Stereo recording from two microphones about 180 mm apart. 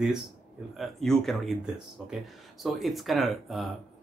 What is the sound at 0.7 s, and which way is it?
Speech, centre (ahead or behind).